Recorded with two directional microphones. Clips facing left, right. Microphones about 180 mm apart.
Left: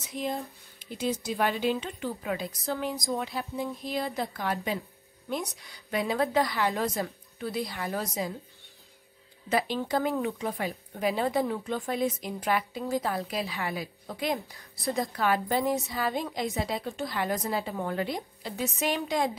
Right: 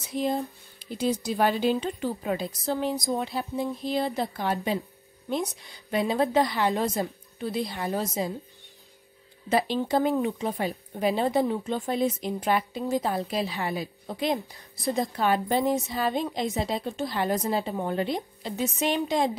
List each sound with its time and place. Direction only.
0.1 s a woman's voice: 35° right (ahead or behind)
9.5 s a woman's voice: 30° right (ahead or behind)